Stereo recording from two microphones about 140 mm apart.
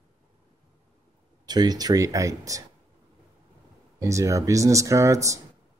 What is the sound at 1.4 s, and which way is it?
Speech, 30° right (ahead or behind).